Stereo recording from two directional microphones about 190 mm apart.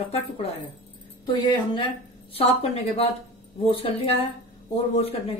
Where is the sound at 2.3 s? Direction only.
30° left (ahead or behind).